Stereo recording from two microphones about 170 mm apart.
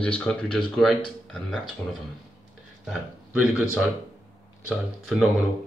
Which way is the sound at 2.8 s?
5° right (ahead or behind).